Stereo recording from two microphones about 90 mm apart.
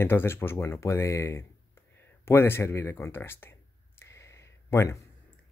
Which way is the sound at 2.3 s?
30° left (ahead or behind).